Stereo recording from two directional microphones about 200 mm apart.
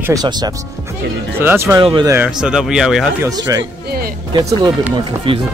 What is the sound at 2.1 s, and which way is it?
Speech, 5° right (ahead or behind).